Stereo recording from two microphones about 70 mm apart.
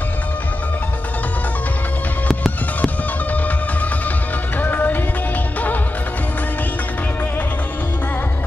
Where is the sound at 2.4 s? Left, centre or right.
Left.